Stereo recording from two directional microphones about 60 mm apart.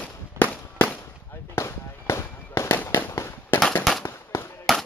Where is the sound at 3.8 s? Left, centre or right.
Centre.